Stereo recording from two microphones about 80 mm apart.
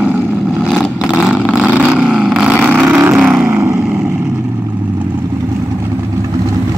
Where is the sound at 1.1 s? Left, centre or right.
Centre.